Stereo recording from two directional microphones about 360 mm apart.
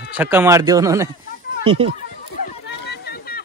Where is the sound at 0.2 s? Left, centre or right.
Centre.